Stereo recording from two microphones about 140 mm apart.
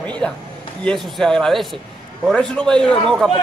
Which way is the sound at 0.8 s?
5° left (ahead or behind).